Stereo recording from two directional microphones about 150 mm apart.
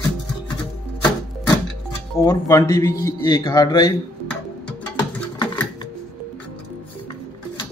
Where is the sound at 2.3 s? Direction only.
20° left (ahead or behind).